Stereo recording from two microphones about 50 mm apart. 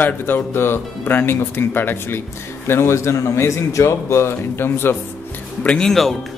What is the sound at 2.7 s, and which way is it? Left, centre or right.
A man's voice, left.